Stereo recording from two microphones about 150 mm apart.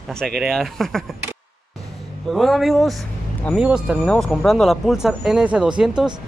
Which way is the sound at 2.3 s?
Centre (ahead or behind).